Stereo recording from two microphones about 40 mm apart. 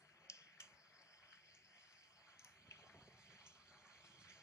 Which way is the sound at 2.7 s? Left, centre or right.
Left.